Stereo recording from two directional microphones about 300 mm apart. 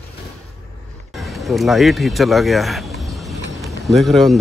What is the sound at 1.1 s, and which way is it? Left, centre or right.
Speech, centre.